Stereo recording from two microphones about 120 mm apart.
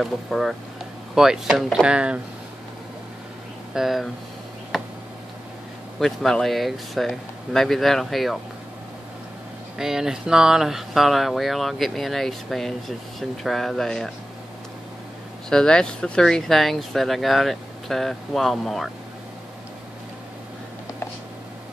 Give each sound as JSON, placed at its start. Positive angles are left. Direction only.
{"t": 0.0, "sound": "speech", "side_deg": 0}
{"t": 3.7, "sound": "speech", "side_deg": 0}
{"t": 5.9, "sound": "speech", "side_deg": 5}
{"t": 9.8, "sound": "speech", "side_deg": -5}
{"t": 15.5, "sound": "speech", "side_deg": 5}